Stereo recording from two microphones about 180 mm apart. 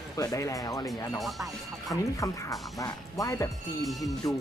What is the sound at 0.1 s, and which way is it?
Speech, 20° left (ahead or behind).